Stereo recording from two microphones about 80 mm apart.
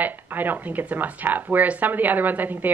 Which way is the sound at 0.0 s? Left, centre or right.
Right.